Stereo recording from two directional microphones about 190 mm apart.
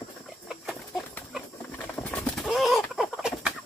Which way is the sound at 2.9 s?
5° right (ahead or behind).